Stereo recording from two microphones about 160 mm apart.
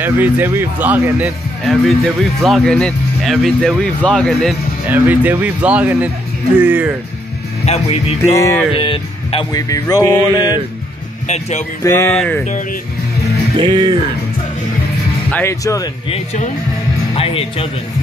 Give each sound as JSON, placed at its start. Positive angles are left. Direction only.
{"t": 0.0, "sound": "speech", "side_deg": -10}
{"t": 1.6, "sound": "speech", "side_deg": 0}
{"t": 4.8, "sound": "speech", "side_deg": -10}
{"t": 7.6, "sound": "speech", "side_deg": 40}
{"t": 8.3, "sound": "music", "side_deg": 20}
{"t": 8.7, "sound": "music", "side_deg": 30}
{"t": 11.2, "sound": "speech", "side_deg": 45}
{"t": 11.8, "sound": "speech", "side_deg": 15}
{"t": 13.6, "sound": "speech", "side_deg": -35}
{"t": 15.3, "sound": "music", "side_deg": 20}
{"t": 16.1, "sound": "speech", "side_deg": 45}